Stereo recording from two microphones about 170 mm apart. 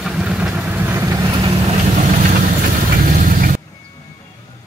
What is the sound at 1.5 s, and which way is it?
Vehicle, 40° right (ahead or behind).